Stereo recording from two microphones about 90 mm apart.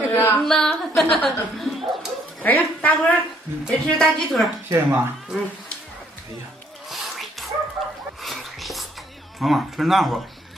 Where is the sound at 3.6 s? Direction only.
10° left (ahead or behind).